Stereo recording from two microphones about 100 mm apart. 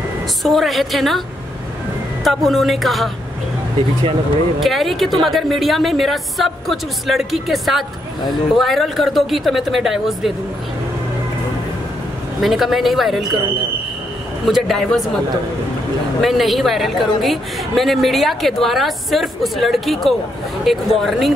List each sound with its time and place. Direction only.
0.4 s a woman's voice: centre (ahead or behind)
2.2 s a woman's voice: centre (ahead or behind)
4.6 s a woman's voice: centre (ahead or behind)
12.4 s a woman's voice: centre (ahead or behind)
14.4 s a woman's voice: centre (ahead or behind)